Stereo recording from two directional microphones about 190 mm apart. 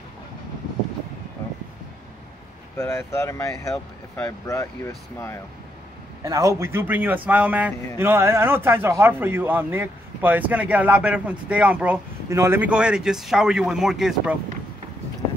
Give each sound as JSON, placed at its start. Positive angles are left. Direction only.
{"t": 2.8, "sound": "speech", "side_deg": 15}
{"t": 6.2, "sound": "a man's voice", "side_deg": -15}